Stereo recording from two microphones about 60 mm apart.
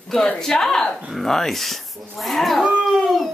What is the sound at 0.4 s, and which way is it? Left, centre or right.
A woman's voice, centre.